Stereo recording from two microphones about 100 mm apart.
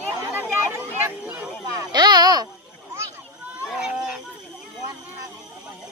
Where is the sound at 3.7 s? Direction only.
5° right (ahead or behind).